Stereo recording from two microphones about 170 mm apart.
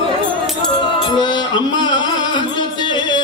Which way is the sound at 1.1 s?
25° left (ahead or behind).